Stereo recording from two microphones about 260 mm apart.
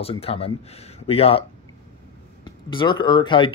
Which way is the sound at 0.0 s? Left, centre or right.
Left.